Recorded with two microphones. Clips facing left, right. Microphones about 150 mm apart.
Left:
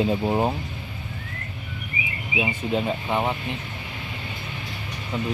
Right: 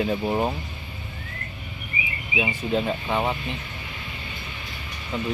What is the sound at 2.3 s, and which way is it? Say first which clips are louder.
Speech: even; 10° left (ahead or behind).